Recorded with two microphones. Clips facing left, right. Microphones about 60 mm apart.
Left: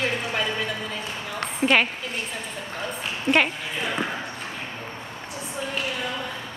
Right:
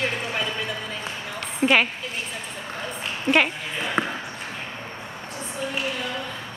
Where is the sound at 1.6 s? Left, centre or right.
Centre.